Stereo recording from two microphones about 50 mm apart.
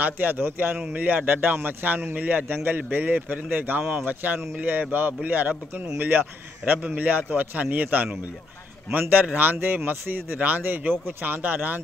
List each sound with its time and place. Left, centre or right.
0.0 s speech: right
0.7 s speech: right
9.1 s speech: right